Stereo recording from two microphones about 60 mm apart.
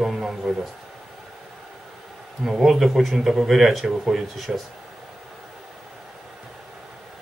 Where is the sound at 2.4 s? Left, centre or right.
Centre.